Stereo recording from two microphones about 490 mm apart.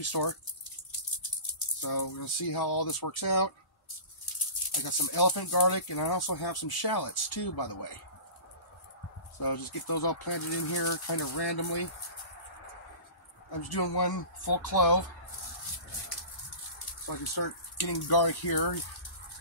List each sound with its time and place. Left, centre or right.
0.0 s speech: left
1.8 s speech: left
4.7 s speech: left
9.4 s speech: left
13.7 s speech: left
17.1 s speech: left